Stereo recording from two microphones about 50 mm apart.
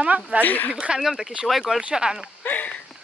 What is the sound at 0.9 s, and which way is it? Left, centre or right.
Speech, centre.